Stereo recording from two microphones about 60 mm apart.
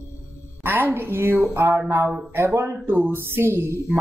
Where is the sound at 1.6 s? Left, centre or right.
Right.